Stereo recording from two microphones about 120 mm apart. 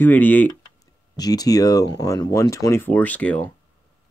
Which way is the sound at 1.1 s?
30° left (ahead or behind).